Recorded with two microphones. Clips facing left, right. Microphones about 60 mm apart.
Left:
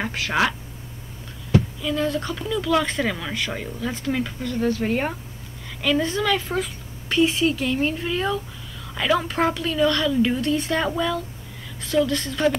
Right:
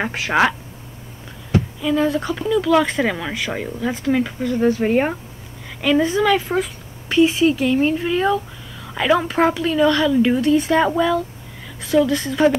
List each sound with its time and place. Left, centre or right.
0.0 s speech: right
1.8 s speech: centre